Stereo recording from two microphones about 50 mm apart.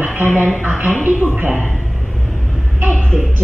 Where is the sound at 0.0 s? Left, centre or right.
Right.